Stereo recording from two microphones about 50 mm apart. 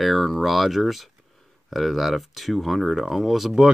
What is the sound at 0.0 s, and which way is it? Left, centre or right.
Speech, centre.